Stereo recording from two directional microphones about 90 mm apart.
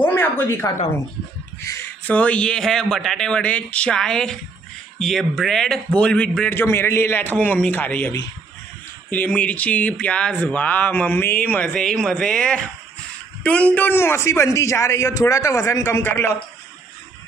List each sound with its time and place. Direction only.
0.0 s a sound: 20° left (ahead or behind)
1.6 s speech: 35° left (ahead or behind)
2.0 s a man's voice: 15° left (ahead or behind)
6.5 s a man's voice: 25° left (ahead or behind)